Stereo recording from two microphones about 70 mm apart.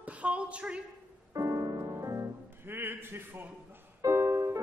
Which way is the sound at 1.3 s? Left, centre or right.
Right.